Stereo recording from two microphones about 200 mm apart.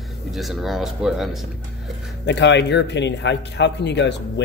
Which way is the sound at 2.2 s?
60° left (ahead or behind).